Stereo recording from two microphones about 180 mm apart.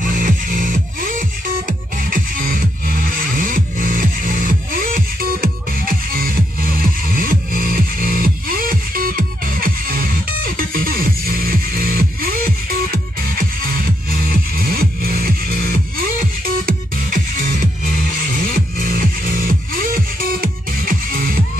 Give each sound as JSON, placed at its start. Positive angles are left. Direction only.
{"t": 0.0, "sound": "music", "side_deg": -50}